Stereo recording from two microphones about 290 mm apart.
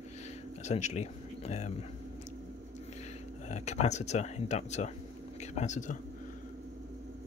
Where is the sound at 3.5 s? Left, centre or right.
Left.